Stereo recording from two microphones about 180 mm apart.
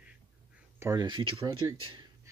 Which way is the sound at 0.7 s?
20° right (ahead or behind).